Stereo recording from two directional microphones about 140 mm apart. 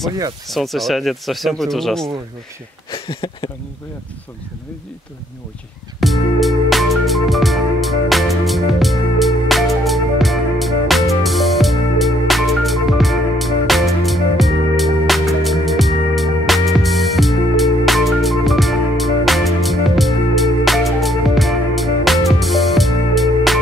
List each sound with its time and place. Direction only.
0.5 s speech: centre (ahead or behind)
2.9 s speech: 35° left (ahead or behind)
5.9 s music: centre (ahead or behind)